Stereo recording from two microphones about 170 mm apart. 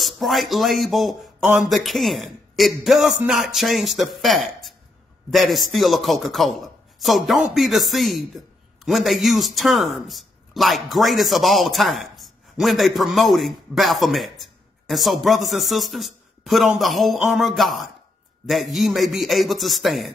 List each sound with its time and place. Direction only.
0.0 s speech: centre (ahead or behind)